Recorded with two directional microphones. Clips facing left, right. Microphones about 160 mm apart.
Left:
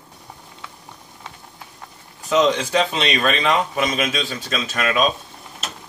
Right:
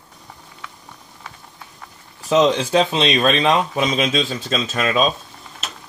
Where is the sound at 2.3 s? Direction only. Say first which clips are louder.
Right 2 dB; 30° right (ahead or behind).